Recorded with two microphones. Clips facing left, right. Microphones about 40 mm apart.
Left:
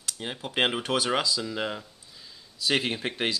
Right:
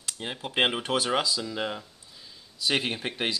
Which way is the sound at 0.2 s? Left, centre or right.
Centre.